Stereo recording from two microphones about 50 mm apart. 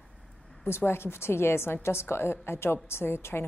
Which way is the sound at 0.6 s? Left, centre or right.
Left.